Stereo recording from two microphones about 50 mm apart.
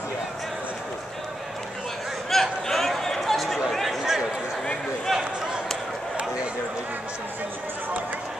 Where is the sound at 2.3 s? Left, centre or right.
Centre.